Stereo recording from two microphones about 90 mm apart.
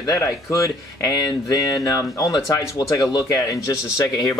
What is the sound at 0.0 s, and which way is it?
Speech, 35° left (ahead or behind).